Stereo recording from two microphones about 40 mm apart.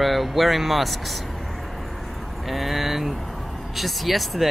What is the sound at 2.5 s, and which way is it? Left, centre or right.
Speech, centre.